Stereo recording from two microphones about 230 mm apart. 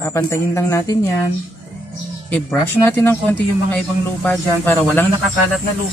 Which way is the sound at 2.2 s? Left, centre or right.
Centre.